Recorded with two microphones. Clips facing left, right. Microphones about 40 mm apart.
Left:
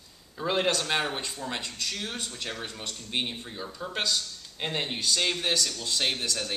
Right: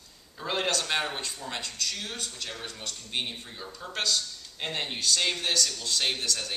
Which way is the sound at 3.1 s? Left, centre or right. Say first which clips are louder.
Left 2 dB; centre.